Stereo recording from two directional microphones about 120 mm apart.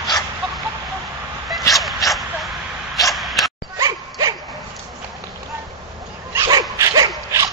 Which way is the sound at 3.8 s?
30° right (ahead or behind).